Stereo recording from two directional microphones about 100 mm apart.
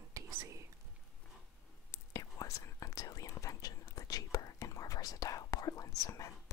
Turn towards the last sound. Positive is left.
turn(degrees=35)  # may be behind; listen again after turning